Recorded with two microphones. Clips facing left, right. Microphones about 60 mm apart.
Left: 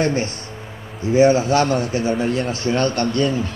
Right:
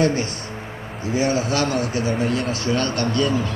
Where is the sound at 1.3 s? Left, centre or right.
Left.